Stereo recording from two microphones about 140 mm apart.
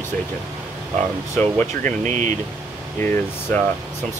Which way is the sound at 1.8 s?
60° right (ahead or behind).